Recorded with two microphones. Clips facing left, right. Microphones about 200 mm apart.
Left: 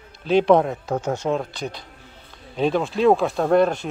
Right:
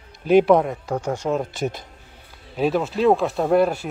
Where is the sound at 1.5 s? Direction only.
45° right (ahead or behind).